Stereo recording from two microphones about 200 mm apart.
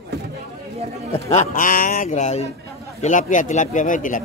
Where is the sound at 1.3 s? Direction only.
35° left (ahead or behind).